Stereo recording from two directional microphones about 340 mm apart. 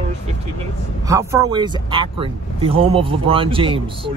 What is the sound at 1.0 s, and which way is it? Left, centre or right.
Speech, centre.